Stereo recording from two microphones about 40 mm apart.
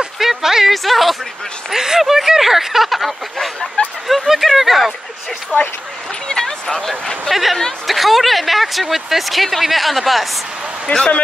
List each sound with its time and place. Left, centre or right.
0.2 s a sound: centre
0.8 s speech: centre
3.8 s speech: left
4.1 s speech: centre
5.5 s speech: left
6.2 s speech: centre
10.9 s speech: left